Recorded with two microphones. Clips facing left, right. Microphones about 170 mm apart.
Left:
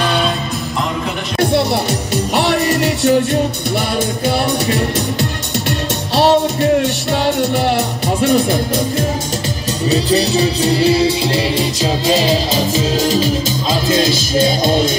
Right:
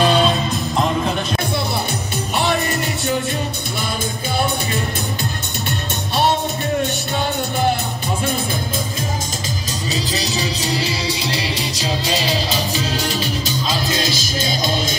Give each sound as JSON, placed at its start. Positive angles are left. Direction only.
{"t": 1.4, "sound": "music", "side_deg": 75}
{"t": 7.2, "sound": "music", "side_deg": 75}
{"t": 9.8, "sound": "music", "side_deg": 60}